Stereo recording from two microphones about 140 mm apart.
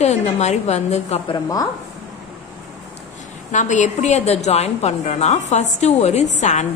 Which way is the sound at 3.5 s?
60° left (ahead or behind).